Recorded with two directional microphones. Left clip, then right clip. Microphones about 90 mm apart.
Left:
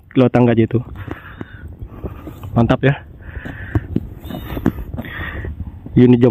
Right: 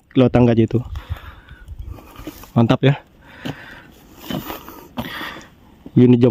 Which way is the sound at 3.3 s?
60° right (ahead or behind).